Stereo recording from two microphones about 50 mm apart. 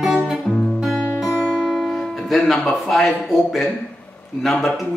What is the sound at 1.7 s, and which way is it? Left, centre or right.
Music, centre.